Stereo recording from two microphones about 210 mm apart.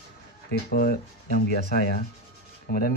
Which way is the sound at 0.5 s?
45° left (ahead or behind).